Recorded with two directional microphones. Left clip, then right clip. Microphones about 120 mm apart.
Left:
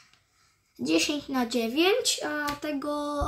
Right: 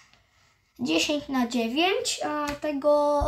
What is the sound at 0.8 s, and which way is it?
Speech, 40° right (ahead or behind).